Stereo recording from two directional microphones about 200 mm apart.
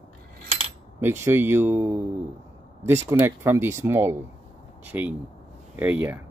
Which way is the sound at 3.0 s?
10° right (ahead or behind).